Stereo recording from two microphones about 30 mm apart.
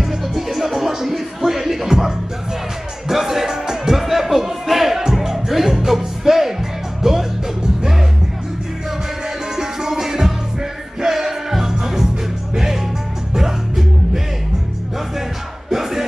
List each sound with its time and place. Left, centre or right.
0.0 s music: centre
9.6 s music: centre
15.7 s music: centre